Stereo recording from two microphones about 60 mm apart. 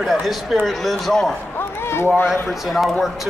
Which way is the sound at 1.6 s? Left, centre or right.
Left.